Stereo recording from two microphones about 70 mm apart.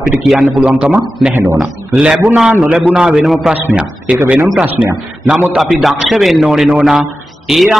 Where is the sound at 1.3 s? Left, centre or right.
Right.